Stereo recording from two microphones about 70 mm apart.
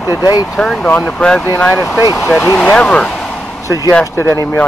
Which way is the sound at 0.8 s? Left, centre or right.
Centre.